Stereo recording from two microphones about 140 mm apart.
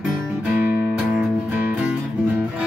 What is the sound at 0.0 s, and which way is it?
Music, 5° right (ahead or behind).